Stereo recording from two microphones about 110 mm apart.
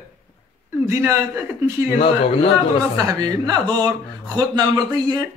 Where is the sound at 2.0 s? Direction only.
60° left (ahead or behind).